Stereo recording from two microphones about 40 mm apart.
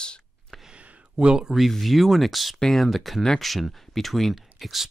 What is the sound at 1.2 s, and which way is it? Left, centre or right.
Speech, centre.